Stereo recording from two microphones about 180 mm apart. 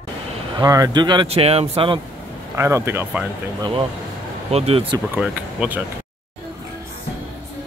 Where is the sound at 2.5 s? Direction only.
15° right (ahead or behind).